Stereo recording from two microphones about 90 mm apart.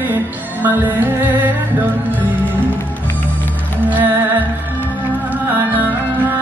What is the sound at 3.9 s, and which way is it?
Music, 20° right (ahead or behind).